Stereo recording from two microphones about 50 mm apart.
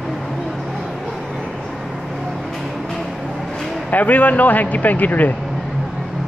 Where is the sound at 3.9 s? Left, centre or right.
Left.